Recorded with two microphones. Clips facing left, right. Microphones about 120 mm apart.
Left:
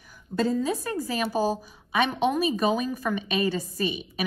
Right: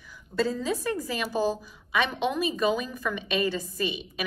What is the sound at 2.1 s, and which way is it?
A woman's voice, 40° left (ahead or behind).